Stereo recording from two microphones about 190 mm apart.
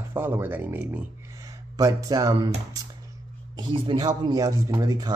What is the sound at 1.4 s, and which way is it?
Speech, 20° right (ahead or behind).